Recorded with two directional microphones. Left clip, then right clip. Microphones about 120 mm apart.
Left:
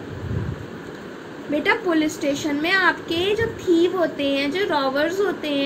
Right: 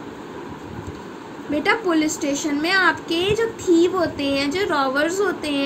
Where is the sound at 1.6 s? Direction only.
20° right (ahead or behind).